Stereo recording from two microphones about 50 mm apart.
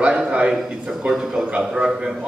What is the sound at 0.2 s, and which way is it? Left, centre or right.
Speech, right.